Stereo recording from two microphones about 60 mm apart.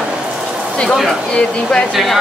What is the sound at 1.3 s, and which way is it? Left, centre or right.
Speech, centre.